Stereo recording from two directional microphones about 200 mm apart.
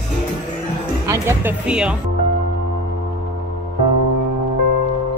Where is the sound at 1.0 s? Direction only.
15° right (ahead or behind).